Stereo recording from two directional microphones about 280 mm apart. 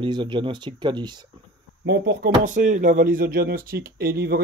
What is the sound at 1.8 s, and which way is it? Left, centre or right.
Speech, right.